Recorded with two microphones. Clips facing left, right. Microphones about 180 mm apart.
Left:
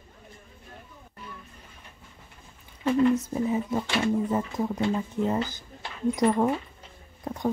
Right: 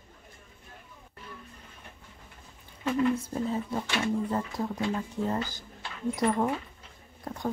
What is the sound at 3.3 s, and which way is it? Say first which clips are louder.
Speech: left 4 dB; 15° left (ahead or behind).